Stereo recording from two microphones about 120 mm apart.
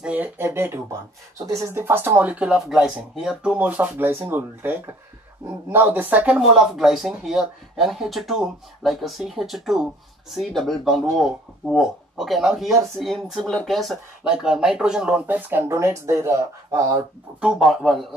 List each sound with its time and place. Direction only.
0.0 s speech: 15° right (ahead or behind)
17.4 s speech: 5° right (ahead or behind)